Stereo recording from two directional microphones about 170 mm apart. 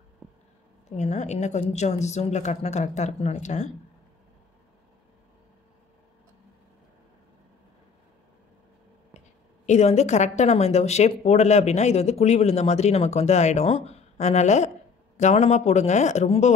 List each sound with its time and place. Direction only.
0.8 s speech: 40° left (ahead or behind)
9.7 s speech: 40° left (ahead or behind)